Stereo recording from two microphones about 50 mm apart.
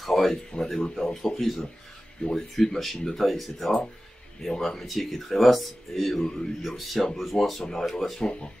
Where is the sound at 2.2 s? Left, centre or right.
Centre.